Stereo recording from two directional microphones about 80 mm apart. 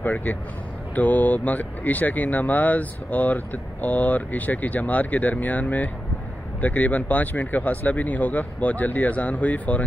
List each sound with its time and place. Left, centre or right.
0.0 s speech: left